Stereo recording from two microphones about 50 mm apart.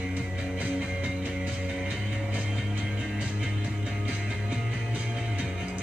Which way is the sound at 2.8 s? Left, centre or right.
Right.